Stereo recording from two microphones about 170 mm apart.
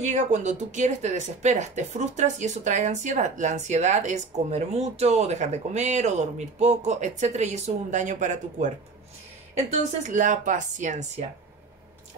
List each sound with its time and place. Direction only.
0.0 s speech: 45° right (ahead or behind)
10.0 s speech: 45° right (ahead or behind)